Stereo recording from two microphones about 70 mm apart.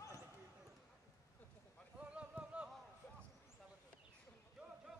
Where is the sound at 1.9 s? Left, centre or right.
Centre.